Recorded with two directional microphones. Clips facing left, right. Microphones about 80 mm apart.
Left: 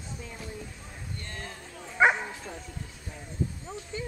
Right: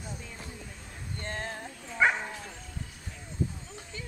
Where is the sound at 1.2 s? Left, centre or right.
Right.